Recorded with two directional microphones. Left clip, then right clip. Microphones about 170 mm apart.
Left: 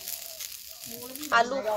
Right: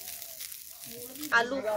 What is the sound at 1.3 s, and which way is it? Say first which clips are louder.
Speech: left 3 dB; 25° right (ahead or behind).